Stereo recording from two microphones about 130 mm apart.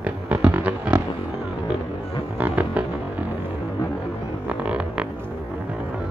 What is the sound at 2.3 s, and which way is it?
Music, 10° right (ahead or behind).